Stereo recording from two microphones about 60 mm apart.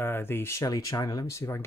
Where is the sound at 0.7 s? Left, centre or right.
Left.